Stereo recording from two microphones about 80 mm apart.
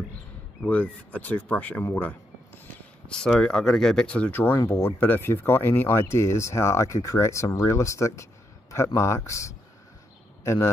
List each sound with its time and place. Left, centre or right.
0.6 s speech: centre
3.1 s a man's voice: centre; by 10.7 s left